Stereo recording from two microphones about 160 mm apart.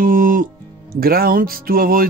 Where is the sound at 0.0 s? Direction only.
60° right (ahead or behind).